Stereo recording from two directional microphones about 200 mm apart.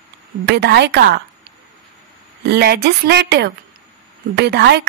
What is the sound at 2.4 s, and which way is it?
A woman's voice, 55° right (ahead or behind).